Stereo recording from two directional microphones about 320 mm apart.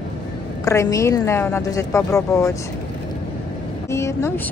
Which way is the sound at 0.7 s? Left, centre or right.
Centre.